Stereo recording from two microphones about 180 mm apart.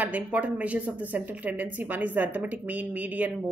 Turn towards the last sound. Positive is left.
turn(degrees=-10)  # may be behind; listen again after turning